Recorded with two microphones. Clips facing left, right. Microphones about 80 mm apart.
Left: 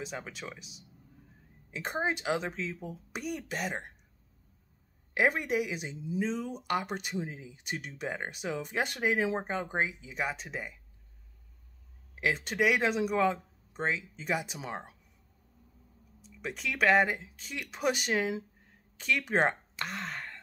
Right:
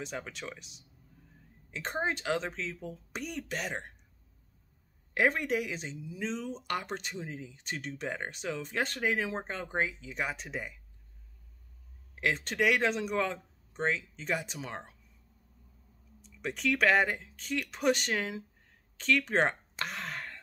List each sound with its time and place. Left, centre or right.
0.0 s speech: centre
5.1 s speech: centre
5.9 s speech: left
6.2 s speech: centre
10.1 s speech: centre
12.2 s speech: centre
16.2 s speech: centre
19.8 s gasp: centre